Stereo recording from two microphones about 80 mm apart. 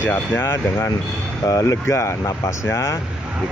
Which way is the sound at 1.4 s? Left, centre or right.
Left.